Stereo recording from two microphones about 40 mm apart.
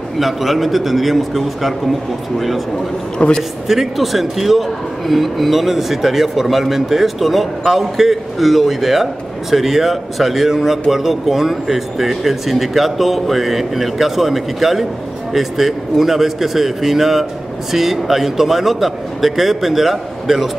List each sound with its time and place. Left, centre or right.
0.2 s a man's voice: centre
3.2 s a man's voice: left
3.6 s a man's voice: centre